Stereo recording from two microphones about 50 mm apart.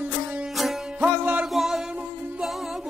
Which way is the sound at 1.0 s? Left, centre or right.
Right.